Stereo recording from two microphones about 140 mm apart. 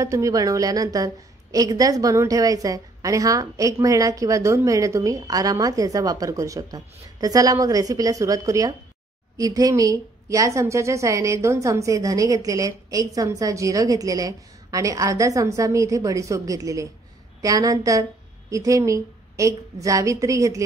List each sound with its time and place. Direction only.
0.0 s a woman's voice: 25° right (ahead or behind)